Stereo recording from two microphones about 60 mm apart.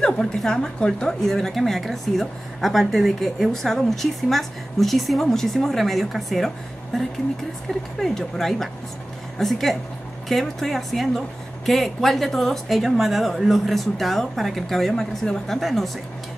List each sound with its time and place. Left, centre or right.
0.0 s a woman's voice: centre
8.0 s a woman's voice: centre